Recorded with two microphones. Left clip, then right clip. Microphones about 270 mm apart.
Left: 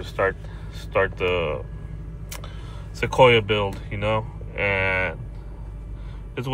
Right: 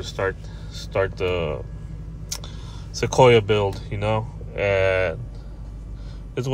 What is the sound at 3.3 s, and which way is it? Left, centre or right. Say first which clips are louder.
Speech: right 2 dB; centre.